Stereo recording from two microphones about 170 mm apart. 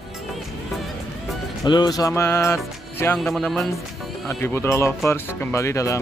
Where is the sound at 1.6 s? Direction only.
25° left (ahead or behind).